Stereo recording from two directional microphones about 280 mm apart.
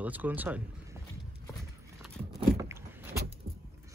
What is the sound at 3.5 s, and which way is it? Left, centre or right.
Vehicle, right.